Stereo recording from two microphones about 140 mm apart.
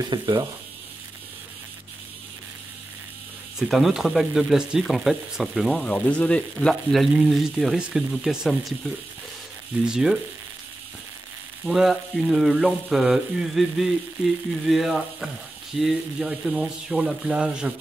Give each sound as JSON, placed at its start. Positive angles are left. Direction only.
{"t": 0.0, "sound": "speech", "side_deg": -30}
{"t": 3.5, "sound": "speech", "side_deg": 0}
{"t": 9.8, "sound": "speech", "side_deg": -5}
{"t": 11.6, "sound": "speech", "side_deg": 0}